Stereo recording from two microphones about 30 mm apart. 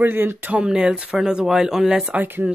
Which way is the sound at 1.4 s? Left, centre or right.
Centre.